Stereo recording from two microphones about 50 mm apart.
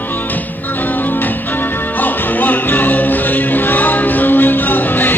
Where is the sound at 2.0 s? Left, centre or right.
Left.